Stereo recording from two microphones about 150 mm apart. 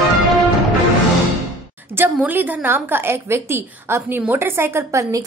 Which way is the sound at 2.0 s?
10° right (ahead or behind).